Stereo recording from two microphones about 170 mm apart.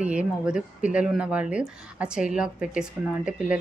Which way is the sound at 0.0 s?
5° right (ahead or behind).